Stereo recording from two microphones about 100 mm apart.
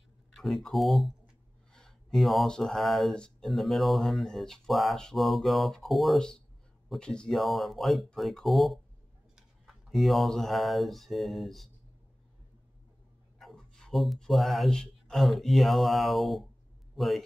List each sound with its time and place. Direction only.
0.3 s speech: 5° left (ahead or behind)
13.4 s a man's voice: 5° left (ahead or behind)